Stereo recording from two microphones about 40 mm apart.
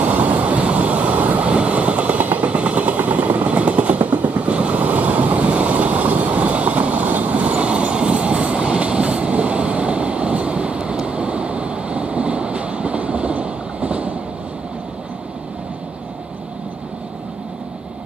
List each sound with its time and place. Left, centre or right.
0.0 s vehicle: right
4.5 s train: right